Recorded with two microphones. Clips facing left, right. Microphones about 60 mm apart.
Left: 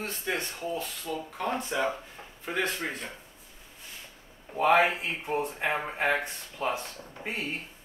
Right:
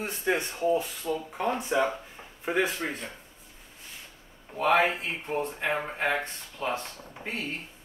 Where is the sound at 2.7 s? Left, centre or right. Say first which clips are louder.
Right 1 dB; centre.